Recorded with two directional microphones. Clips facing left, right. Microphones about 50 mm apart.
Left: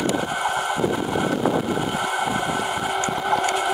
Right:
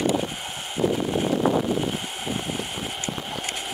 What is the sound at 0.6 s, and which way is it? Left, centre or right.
Vehicle, left.